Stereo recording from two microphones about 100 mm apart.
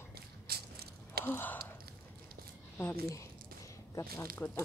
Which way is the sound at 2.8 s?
30° left (ahead or behind).